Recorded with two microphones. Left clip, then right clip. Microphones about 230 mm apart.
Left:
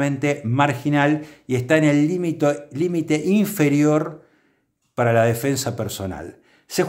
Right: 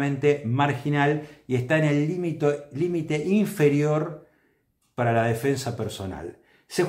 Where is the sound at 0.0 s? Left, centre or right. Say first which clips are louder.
Left 1 dB; left.